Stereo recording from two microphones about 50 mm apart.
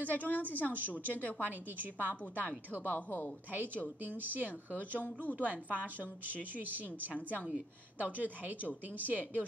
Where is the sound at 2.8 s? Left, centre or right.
Left.